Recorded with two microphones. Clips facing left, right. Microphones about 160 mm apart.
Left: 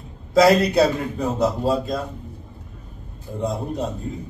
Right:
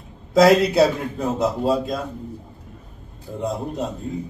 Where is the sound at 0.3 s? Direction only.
Centre (ahead or behind).